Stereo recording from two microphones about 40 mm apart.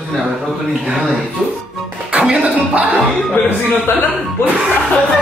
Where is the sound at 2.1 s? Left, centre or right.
Right.